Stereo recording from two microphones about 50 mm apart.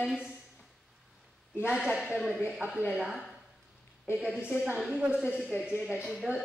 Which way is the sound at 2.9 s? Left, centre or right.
Centre.